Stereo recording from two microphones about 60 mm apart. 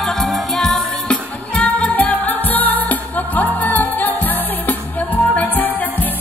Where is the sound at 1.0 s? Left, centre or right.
Centre.